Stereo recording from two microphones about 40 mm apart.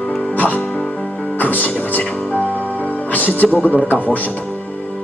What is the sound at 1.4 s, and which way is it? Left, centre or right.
Speech, left.